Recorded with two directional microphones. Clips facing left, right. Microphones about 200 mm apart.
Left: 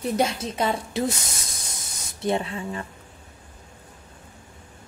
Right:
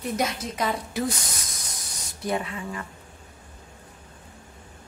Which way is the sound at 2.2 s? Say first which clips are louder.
Left 3 dB; 25° left (ahead or behind).